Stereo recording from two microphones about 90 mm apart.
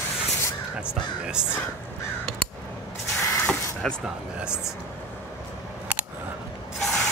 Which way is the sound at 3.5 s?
10° left (ahead or behind).